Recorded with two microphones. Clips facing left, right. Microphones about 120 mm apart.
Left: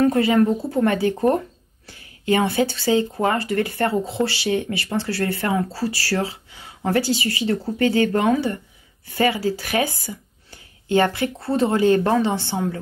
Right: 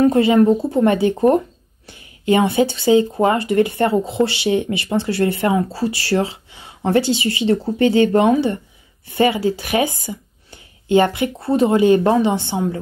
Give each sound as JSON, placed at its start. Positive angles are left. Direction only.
{"t": 0.0, "sound": "speech", "side_deg": -20}